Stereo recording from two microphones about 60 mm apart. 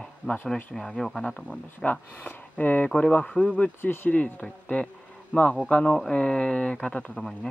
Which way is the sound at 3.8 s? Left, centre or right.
Left.